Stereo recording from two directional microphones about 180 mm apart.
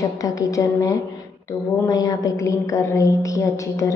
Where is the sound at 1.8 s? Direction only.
20° left (ahead or behind).